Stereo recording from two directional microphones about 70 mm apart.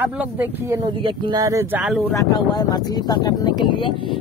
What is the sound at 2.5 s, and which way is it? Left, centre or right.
Speech, left.